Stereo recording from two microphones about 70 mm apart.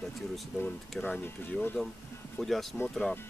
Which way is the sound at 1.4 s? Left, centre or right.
Left.